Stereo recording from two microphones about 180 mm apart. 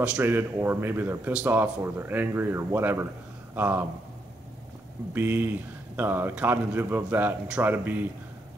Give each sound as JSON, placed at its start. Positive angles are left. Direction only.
{"t": 0.0, "sound": "a man's voice", "side_deg": -10}
{"t": 5.1, "sound": "a man's voice", "side_deg": -10}